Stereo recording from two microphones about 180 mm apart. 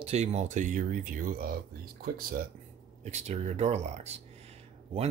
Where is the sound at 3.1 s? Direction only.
40° right (ahead or behind).